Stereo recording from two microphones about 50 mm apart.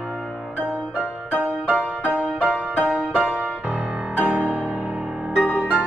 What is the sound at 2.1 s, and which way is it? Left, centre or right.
Music, right.